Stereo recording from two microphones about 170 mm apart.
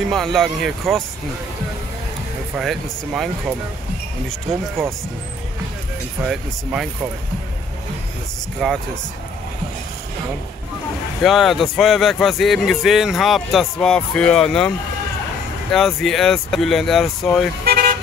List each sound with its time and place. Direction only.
0.1 s speech: centre (ahead or behind)
2.5 s speech: centre (ahead or behind)
6.2 s speech: centre (ahead or behind)
8.6 s speech: centre (ahead or behind)
11.2 s speech: centre (ahead or behind)
15.7 s speech: centre (ahead or behind)
17.6 s vehicle: 60° right (ahead or behind)